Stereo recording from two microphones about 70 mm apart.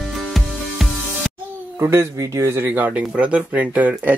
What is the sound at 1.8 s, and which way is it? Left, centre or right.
Speech, right.